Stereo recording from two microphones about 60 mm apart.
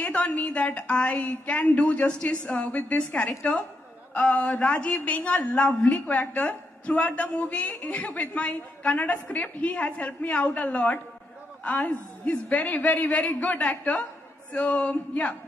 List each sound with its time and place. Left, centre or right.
0.0 s a man's voice: left